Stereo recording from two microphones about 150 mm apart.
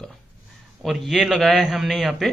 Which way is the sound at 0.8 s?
Centre (ahead or behind).